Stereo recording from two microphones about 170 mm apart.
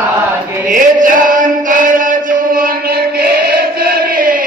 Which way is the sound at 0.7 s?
50° right (ahead or behind).